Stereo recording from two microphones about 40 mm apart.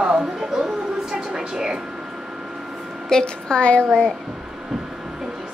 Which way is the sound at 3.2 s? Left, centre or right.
Left.